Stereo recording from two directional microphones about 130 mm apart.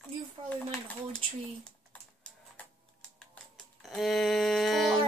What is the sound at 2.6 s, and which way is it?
Typing, 10° left (ahead or behind).